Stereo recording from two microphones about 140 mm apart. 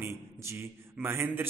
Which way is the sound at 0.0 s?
20° right (ahead or behind).